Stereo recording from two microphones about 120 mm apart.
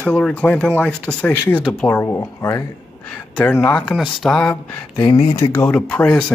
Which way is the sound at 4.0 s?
Centre (ahead or behind).